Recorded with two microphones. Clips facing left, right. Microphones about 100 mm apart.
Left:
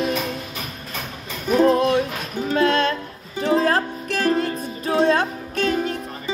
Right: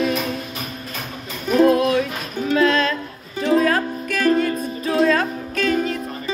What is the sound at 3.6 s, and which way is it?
Music, 30° left (ahead or behind).